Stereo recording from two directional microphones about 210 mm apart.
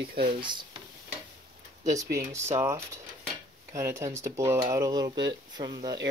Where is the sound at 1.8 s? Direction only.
15° right (ahead or behind).